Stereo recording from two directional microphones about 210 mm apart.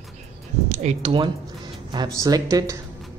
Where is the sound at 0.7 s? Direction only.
35° right (ahead or behind).